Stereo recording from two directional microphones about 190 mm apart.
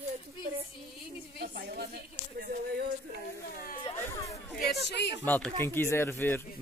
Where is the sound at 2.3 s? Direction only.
55° right (ahead or behind).